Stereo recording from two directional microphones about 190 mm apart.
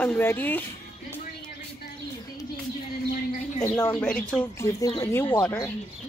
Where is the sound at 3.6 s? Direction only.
10° left (ahead or behind).